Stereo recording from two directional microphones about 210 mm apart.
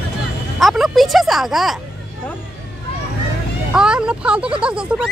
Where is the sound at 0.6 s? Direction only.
Centre (ahead or behind).